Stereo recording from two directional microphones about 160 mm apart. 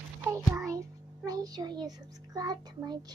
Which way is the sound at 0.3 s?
20° right (ahead or behind).